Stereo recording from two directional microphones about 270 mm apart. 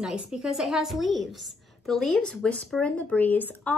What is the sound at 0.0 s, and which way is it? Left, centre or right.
A woman's voice, centre.